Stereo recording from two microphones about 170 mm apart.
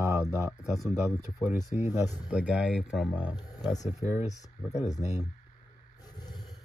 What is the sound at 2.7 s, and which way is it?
Speech, centre (ahead or behind).